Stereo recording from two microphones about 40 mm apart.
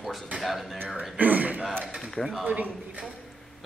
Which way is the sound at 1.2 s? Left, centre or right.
Right.